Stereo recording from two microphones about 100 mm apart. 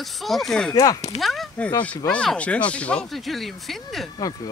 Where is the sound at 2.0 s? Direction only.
10° left (ahead or behind).